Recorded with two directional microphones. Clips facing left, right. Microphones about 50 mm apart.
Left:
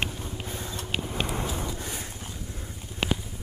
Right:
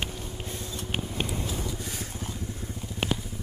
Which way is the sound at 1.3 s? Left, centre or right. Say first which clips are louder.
Left 2 dB; left.